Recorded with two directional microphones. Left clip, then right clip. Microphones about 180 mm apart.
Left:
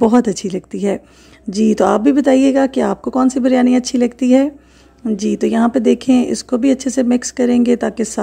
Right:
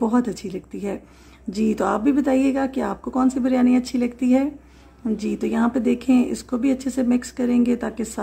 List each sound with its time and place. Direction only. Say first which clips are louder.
0.0 s a woman's voice: left 9 dB; 40° left (ahead or behind)